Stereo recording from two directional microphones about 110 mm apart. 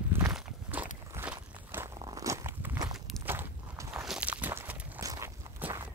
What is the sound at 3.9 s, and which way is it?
Walk, 5° right (ahead or behind).